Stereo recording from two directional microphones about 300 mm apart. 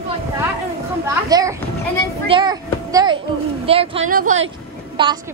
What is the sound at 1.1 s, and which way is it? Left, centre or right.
A woman's voice, centre.